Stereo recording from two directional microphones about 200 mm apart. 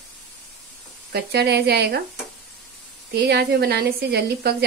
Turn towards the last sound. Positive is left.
turn(degrees=-55)  # may be behind; listen again after turning